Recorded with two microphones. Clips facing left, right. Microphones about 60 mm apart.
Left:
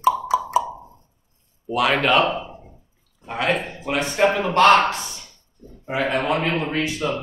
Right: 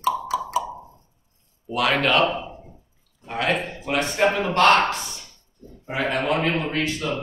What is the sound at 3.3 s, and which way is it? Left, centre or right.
Speech, centre.